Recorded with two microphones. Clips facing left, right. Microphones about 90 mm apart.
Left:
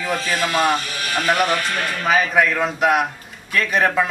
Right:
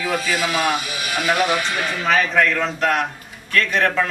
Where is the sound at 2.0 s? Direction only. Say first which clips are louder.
Left 1 dB; 10° left (ahead or behind).